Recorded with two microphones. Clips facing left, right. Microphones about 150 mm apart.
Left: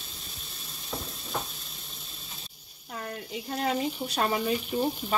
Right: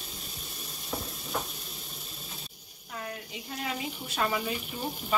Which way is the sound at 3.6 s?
35° left (ahead or behind).